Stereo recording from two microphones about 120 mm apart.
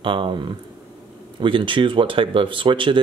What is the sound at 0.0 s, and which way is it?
Speech, 45° right (ahead or behind).